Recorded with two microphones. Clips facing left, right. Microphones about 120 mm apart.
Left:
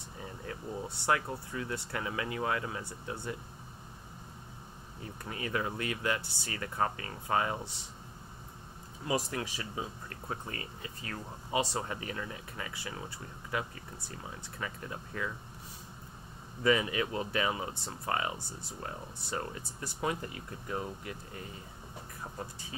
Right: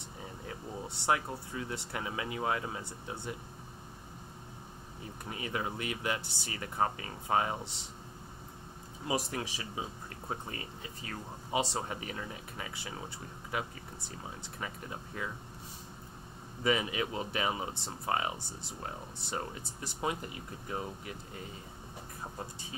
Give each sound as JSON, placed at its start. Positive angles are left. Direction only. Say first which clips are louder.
{"t": 0.5, "sound": "speech", "louder": "left 3 dB", "side_deg": -20}
{"t": 5.2, "sound": "speech", "louder": "left 2 dB", "side_deg": -20}
{"t": 9.0, "sound": "speech", "louder": "left 1 dB", "side_deg": -20}
{"t": 16.6, "sound": "speech", "louder": "left 2 dB", "side_deg": -20}